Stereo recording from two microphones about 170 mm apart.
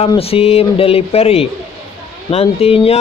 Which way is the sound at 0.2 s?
35° left (ahead or behind).